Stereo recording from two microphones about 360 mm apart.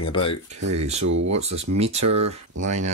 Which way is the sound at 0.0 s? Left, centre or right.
Centre.